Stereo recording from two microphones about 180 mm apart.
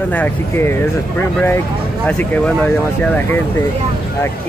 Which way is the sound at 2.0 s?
5° left (ahead or behind).